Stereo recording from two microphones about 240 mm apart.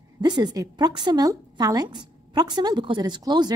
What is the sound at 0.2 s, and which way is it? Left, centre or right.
A woman's voice, centre.